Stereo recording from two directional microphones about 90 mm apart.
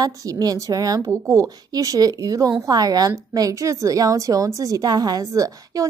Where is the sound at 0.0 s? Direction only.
40° right (ahead or behind).